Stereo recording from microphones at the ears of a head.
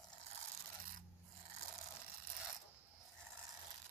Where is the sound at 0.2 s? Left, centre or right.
Right.